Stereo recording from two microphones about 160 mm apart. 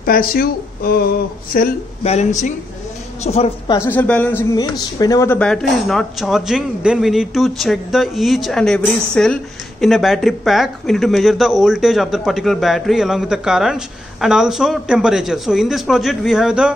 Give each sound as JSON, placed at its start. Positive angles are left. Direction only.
{"t": 0.0, "sound": "speech", "side_deg": 65}
{"t": 2.0, "sound": "a woman's voice", "side_deg": 45}
{"t": 3.7, "sound": "speech", "side_deg": 15}
{"t": 4.6, "sound": "speech", "side_deg": 25}
{"t": 5.4, "sound": "a man's voice", "side_deg": 5}